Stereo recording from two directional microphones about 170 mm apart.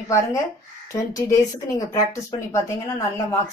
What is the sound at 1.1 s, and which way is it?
A woman's voice, 20° left (ahead or behind).